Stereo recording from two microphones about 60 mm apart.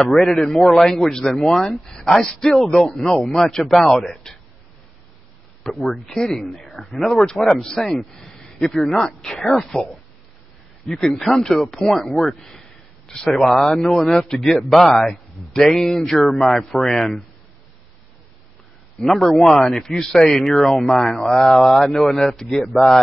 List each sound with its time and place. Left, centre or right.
0.0 s a man's voice: centre
4.1 s speech: centre
5.8 s a man's voice: centre
10.9 s a man's voice: centre
18.9 s speech: centre